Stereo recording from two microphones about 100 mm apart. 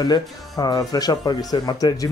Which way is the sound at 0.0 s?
45° left (ahead or behind).